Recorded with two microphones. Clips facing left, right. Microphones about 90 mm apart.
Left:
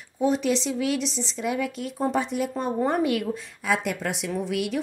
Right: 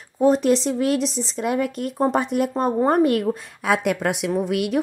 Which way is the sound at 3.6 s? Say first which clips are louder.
Right 5 dB; 65° right (ahead or behind).